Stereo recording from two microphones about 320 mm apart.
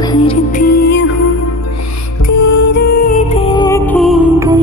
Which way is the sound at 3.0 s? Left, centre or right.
Centre.